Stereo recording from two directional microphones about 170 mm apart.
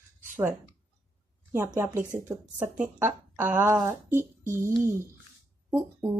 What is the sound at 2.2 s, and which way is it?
A woman's voice, 15° right (ahead or behind).